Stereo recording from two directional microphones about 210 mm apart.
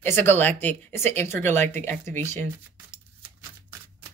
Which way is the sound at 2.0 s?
35° right (ahead or behind).